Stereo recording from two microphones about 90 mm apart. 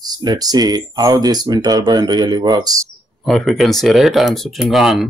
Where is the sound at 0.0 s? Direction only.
50° right (ahead or behind).